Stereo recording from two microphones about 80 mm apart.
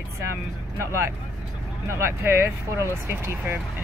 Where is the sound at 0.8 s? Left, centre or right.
Right.